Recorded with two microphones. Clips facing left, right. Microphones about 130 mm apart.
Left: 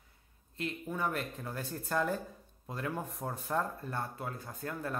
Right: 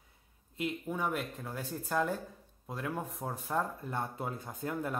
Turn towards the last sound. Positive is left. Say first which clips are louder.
# right 2 dB
turn(degrees=-15)  # may be behind; listen again after turning